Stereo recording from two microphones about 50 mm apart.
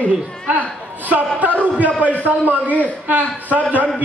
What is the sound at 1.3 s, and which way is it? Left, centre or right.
A man's voice, right.